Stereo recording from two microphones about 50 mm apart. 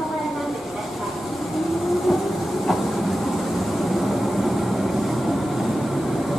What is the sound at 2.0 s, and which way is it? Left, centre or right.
Train, centre.